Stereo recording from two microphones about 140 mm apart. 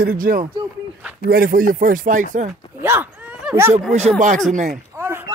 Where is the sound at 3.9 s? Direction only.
55° right (ahead or behind).